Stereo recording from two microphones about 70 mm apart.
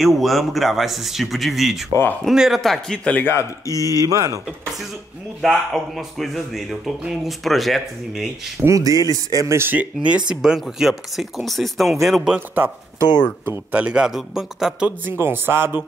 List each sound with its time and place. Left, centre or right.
0.0 s speech: centre
3.0 s speech: centre
3.3 s speech: left
4.1 s speech: right
5.4 s speech: centre
8.6 s speech: right
9.6 s speech: right
9.9 s speech: centre
12.4 s a man's voice: right; by 14.9 s centre
15.0 s speech: right